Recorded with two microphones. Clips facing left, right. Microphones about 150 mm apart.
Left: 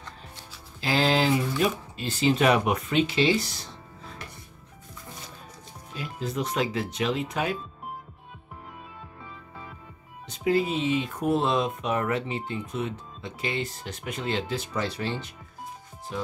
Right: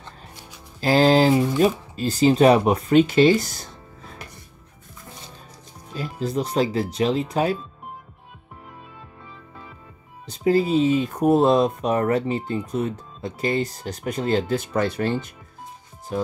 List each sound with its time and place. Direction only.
0.7 s speech: 40° right (ahead or behind)
5.9 s speech: 35° right (ahead or behind)
10.2 s speech: 35° right (ahead or behind)